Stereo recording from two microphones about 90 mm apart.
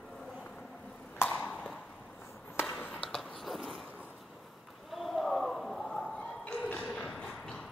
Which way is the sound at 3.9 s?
15° right (ahead or behind).